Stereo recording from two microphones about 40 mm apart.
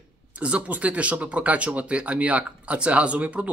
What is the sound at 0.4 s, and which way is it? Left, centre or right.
Speech, right.